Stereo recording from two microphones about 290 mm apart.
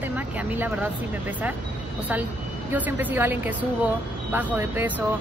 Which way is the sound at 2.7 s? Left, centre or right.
Centre.